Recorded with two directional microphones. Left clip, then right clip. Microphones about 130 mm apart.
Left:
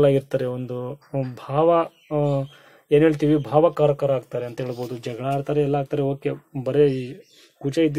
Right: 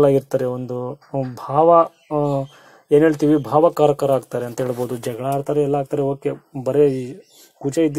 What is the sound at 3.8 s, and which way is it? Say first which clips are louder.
Speech: right 4 dB; 30° right (ahead or behind).